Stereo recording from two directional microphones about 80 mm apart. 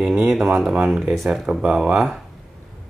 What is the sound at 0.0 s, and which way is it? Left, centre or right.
Speech, centre.